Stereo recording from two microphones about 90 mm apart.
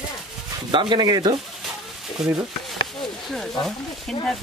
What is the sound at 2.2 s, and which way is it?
Stir, 5° right (ahead or behind).